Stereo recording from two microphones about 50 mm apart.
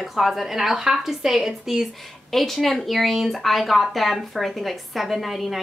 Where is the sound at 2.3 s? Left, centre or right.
Centre.